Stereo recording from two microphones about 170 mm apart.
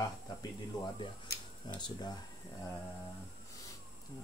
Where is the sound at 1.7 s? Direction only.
25° left (ahead or behind).